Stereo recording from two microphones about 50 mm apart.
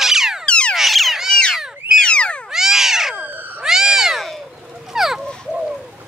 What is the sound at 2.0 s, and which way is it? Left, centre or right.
Frog, left.